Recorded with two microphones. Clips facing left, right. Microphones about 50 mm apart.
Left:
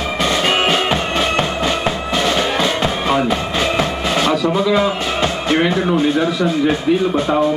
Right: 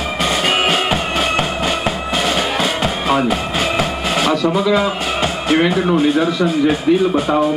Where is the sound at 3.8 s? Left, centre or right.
Centre.